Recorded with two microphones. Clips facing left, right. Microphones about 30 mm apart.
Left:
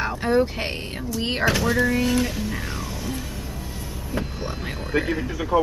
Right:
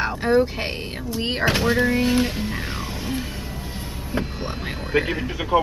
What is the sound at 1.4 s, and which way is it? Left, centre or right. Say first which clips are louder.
Speech: right 1 dB; right.